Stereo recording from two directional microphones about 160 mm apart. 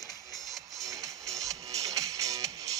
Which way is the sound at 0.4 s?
Centre (ahead or behind).